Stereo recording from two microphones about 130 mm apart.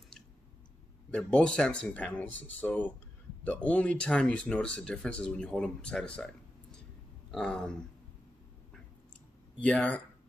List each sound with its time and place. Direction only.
1.1 s speech: 10° left (ahead or behind)
9.6 s speech: 10° left (ahead or behind)